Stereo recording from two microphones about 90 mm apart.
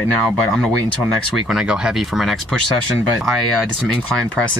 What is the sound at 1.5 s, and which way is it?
Speech, 10° right (ahead or behind).